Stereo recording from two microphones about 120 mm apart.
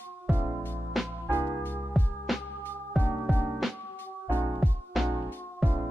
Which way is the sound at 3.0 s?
15° left (ahead or behind).